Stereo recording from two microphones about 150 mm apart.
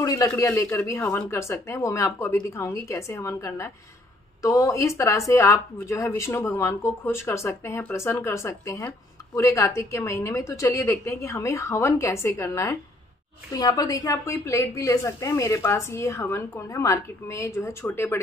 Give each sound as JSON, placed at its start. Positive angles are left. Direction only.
{"t": 0.0, "sound": "speech", "side_deg": 25}